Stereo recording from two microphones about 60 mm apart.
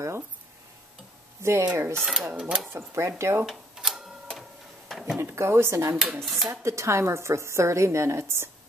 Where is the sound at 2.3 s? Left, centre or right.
Centre.